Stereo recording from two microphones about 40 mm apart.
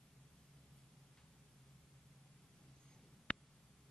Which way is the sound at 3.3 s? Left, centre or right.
Left.